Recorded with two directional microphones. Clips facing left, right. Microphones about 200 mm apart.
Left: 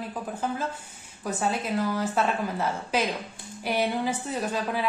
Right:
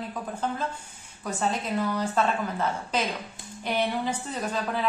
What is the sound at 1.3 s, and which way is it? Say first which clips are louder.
A woman's voice: left 1 dB; 5° left (ahead or behind).